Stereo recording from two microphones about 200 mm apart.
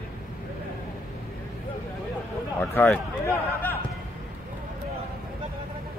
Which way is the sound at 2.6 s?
10° left (ahead or behind).